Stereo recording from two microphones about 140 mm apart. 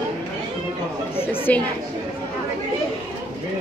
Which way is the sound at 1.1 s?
15° left (ahead or behind).